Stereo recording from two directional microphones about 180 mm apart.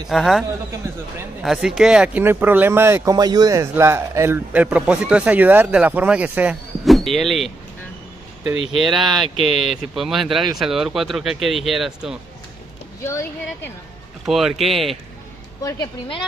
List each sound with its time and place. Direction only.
0.1 s speech: centre (ahead or behind)
8.7 s speech: centre (ahead or behind)
14.2 s speech: centre (ahead or behind)
15.6 s a woman's voice: 20° left (ahead or behind)